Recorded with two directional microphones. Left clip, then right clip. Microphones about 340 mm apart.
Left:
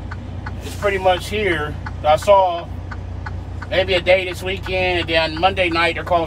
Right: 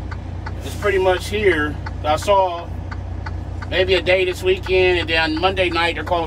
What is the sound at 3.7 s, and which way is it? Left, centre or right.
Speech, centre.